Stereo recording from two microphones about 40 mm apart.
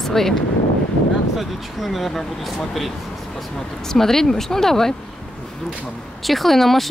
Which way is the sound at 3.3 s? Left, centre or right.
Centre.